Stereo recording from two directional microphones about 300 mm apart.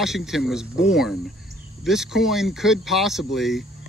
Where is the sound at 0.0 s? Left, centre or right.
Centre.